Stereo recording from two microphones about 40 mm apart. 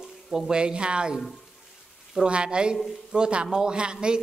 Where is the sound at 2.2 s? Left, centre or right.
Right.